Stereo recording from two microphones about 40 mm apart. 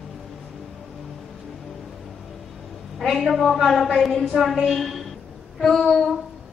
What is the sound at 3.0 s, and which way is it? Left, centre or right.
A woman's voice, centre.